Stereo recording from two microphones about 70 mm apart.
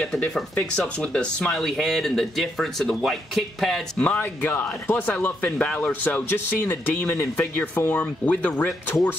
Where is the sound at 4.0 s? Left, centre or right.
Left.